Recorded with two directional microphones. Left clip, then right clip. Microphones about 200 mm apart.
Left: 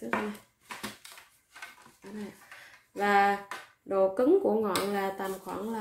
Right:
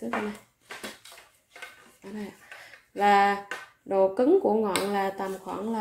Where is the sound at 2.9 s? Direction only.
5° right (ahead or behind).